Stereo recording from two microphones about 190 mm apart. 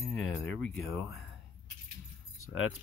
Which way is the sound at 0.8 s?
Centre (ahead or behind).